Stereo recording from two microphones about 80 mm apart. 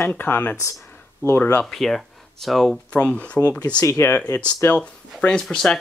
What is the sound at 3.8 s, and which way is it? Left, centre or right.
Speech, left.